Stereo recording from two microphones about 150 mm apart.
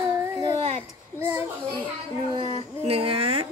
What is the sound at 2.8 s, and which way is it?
Speech, 40° right (ahead or behind).